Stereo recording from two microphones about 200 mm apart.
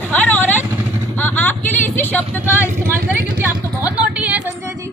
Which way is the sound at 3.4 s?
5° right (ahead or behind).